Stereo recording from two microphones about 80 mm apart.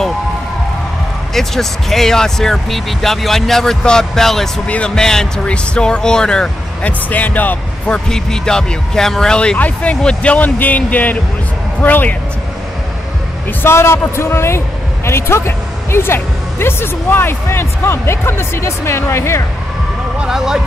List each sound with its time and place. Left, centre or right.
1.3 s speech: centre
7.1 s speech: left
13.6 s speech: left
20.2 s speech: centre